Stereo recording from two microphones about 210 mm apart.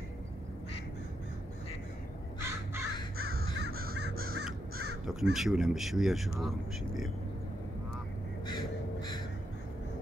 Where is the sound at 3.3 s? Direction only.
50° right (ahead or behind).